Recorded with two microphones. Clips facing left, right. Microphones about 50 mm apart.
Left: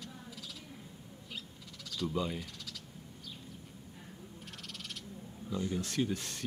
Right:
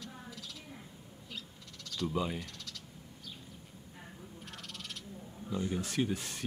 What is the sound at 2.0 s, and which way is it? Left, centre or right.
Speech, centre.